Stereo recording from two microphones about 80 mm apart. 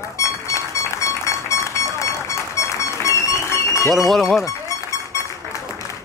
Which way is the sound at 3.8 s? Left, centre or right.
Centre.